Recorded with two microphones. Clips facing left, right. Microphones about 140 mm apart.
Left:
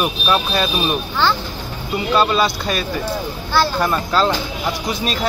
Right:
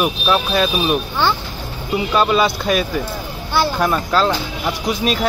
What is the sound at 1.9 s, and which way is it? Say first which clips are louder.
Speech: right 1 dB; 5° right (ahead or behind).